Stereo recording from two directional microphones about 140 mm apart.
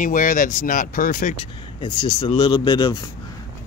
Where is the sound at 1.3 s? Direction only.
35° left (ahead or behind).